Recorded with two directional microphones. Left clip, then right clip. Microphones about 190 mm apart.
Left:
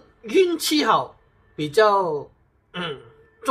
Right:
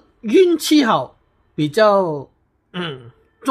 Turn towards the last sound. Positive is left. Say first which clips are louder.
# right 2 dB
turn(degrees=-55)  # may be behind; listen again after turning